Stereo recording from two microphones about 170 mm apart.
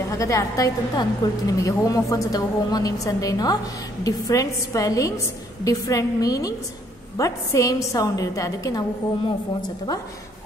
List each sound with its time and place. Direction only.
0.2 s a woman's voice: 20° left (ahead or behind)